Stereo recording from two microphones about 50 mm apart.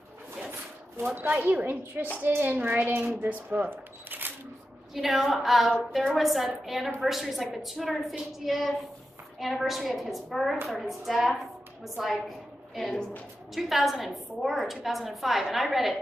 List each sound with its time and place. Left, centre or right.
0.5 s a child's voice: right
3.3 s camera: right
4.9 s a woman's voice: centre